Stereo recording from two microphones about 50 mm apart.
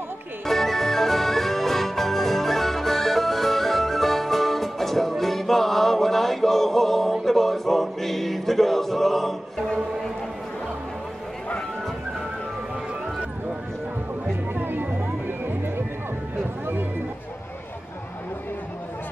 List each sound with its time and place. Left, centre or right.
0.5 s music: centre
14.5 s music: right